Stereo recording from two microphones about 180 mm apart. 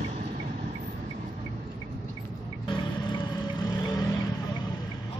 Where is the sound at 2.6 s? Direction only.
25° left (ahead or behind).